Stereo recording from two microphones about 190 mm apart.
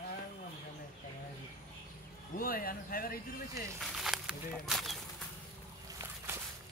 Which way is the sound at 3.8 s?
Centre (ahead or behind).